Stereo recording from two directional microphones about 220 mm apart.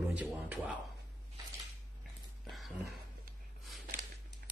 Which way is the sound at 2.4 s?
Centre (ahead or behind).